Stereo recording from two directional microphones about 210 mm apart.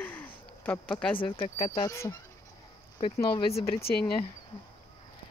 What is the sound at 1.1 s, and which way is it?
Speech, 25° left (ahead or behind).